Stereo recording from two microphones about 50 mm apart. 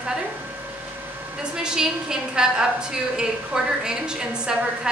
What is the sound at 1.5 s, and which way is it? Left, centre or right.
A woman's voice, centre.